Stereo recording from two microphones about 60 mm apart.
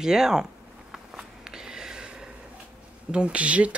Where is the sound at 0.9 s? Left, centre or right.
Centre.